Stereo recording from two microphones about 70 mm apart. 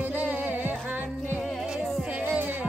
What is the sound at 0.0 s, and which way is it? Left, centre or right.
Music, right.